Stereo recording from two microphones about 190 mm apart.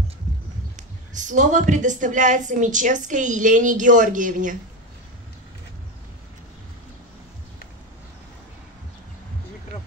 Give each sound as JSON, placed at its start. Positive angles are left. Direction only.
{"t": 0.7, "sound": "a woman's voice", "side_deg": -40}